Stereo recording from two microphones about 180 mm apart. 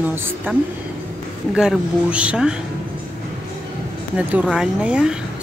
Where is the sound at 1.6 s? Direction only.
5° right (ahead or behind).